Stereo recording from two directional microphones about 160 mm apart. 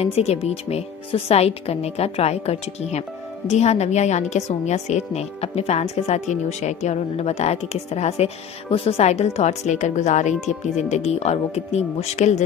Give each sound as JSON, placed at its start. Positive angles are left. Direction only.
{"t": 0.0, "sound": "speech", "side_deg": 40}